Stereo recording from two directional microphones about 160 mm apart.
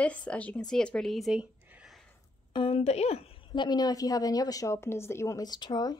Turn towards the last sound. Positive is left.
turn(degrees=25)  # may be behind; listen again after turning